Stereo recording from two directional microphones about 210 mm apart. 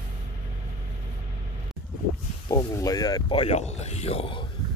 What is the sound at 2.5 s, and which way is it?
Speech, 15° left (ahead or behind).